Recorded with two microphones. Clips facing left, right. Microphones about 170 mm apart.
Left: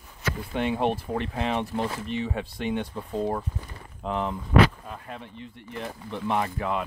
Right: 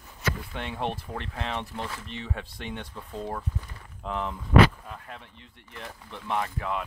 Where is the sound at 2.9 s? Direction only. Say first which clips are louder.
Left 7 dB; 30° left (ahead or behind).